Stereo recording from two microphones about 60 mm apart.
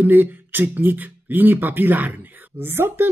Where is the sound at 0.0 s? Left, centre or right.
Right.